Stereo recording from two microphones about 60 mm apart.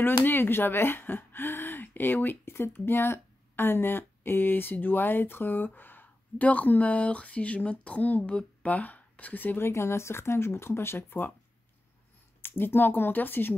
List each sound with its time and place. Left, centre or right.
0.0 s speech: left
9.7 s speech: left
12.4 s speech: left